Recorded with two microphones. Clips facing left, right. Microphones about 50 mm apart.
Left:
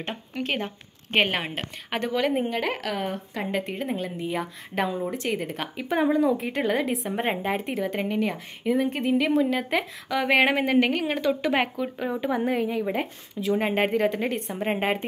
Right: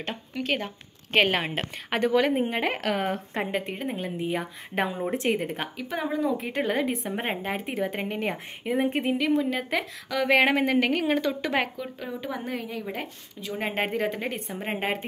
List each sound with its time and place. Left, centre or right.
0.3 s speech: left
1.1 s speech: centre
1.4 s a woman's voice: centre
2.4 s speech: right
3.5 s a woman's voice: centre
3.9 s speech: centre
4.8 s a woman's voice: right
5.3 s speech: centre
5.8 s speech: centre
6.1 s a woman's voice: centre; by 9.1 s right
9.2 s a woman's voice: centre